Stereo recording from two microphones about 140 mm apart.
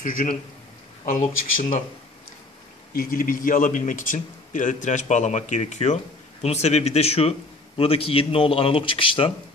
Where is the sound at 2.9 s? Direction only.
90° left; by 9.3 s 40° left (ahead or behind).